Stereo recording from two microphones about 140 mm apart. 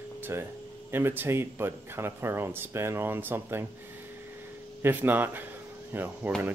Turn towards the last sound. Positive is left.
turn(degrees=-15)  # may be behind; listen again after turning